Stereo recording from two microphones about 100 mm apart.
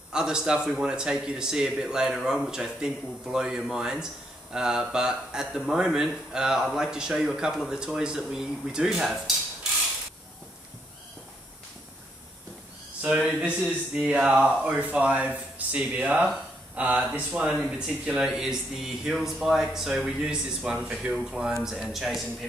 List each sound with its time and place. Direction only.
0.1 s a man's voice: 5° right (ahead or behind)
13.0 s a man's voice: 15° right (ahead or behind)